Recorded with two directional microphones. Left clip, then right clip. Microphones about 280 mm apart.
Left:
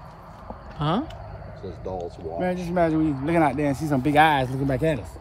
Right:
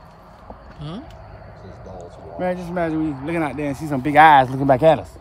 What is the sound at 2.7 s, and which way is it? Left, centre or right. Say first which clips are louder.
Speech: left 1 dB; centre.